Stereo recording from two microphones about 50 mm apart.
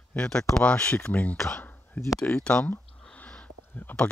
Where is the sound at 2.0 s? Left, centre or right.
Left.